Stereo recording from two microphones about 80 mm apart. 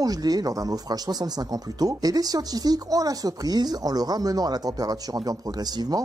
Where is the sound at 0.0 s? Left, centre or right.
Right.